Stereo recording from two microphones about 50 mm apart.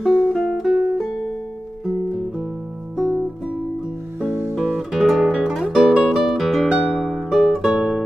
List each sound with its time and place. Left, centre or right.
0.1 s music: centre
3.0 s music: centre
4.2 s music: right
4.6 s music: centre